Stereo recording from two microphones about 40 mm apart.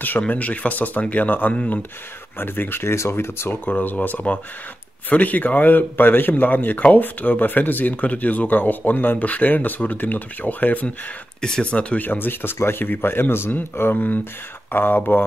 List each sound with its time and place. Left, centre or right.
0.3 s speech: left
1.5 s speech: left
2.3 s speech: left
2.8 s speech: left
3.6 s speech: left
7.9 s speech: left
11.6 s speech: left
12.0 s speech: left
13.9 s speech: left